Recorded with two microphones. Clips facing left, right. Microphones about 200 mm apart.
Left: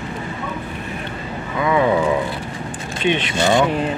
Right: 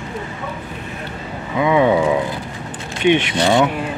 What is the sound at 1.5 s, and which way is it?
Speech, 15° right (ahead or behind).